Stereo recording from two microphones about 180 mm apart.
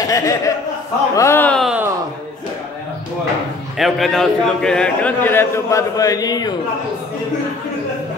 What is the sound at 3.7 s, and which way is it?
A man's voice, centre (ahead or behind).